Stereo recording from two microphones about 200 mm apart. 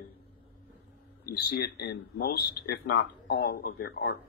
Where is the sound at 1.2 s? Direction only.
50° left (ahead or behind).